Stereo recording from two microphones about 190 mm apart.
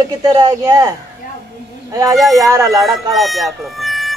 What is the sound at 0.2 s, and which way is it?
Speech, 20° right (ahead or behind).